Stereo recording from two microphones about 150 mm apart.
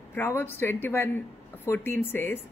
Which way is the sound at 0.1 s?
15° left (ahead or behind).